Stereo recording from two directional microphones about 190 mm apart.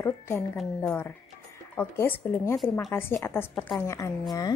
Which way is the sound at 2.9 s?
10° left (ahead or behind).